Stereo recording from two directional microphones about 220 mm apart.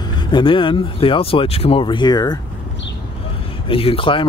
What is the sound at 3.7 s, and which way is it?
Speech, 25° left (ahead or behind).